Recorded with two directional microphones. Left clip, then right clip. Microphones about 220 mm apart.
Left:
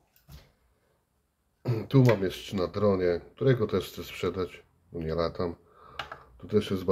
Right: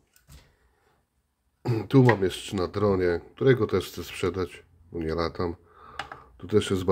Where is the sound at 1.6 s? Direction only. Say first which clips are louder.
Right 4 dB; 30° right (ahead or behind).